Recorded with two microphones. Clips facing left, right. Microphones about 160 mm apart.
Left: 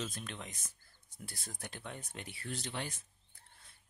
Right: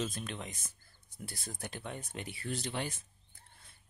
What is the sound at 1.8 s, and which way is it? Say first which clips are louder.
Speech: right 3 dB; 20° right (ahead or behind).